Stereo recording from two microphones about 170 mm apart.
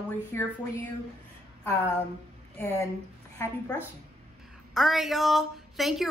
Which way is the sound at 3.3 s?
10° left (ahead or behind).